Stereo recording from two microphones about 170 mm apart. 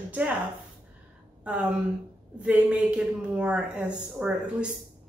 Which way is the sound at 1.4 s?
5° right (ahead or behind).